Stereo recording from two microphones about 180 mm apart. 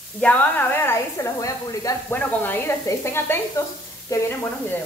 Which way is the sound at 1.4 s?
20° left (ahead or behind).